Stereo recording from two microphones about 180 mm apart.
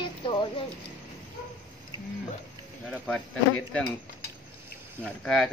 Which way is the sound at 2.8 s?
Centre (ahead or behind).